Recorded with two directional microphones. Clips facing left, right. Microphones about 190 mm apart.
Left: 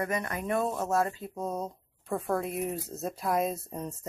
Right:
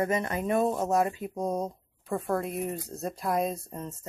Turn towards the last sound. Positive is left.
turn(degrees=5)  # may be behind; listen again after turning